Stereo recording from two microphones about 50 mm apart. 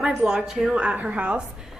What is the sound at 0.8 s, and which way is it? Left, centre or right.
Speech, right.